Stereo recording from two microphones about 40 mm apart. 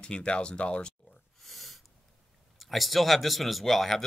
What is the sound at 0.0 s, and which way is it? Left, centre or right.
Speech, left.